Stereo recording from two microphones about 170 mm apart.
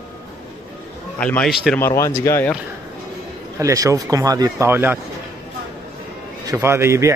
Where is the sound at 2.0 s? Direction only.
15° left (ahead or behind).